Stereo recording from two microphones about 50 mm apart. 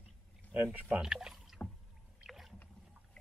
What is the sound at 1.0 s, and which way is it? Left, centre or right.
Speech, centre.